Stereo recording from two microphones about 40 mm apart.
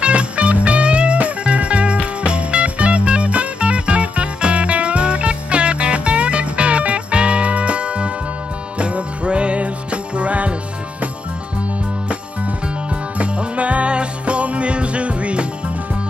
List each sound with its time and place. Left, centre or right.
0.0 s music: right
8.7 s jingle bell: right
12.1 s music: right